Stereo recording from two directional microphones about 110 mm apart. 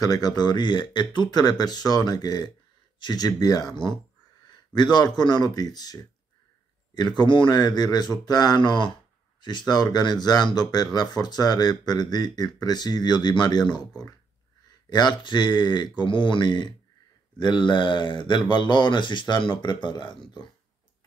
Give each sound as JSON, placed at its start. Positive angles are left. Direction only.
{"t": 0.0, "sound": "speech", "side_deg": 35}